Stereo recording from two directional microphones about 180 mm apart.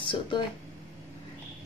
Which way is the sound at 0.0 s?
25° left (ahead or behind).